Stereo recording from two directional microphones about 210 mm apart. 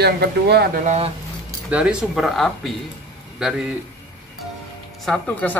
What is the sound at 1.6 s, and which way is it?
Speech, 5° right (ahead or behind).